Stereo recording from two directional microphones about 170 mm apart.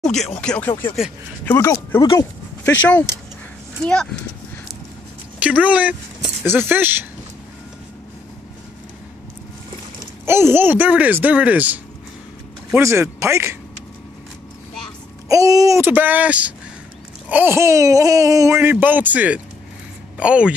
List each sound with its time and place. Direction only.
0.0 s speech: 5° left (ahead or behind)
3.8 s speech: 5° left (ahead or behind)
5.4 s speech: 10° right (ahead or behind)
10.2 s speech: 15° right (ahead or behind)
15.2 s speech: 20° right (ahead or behind)